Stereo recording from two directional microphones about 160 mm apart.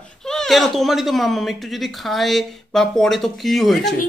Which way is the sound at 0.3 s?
Centre (ahead or behind).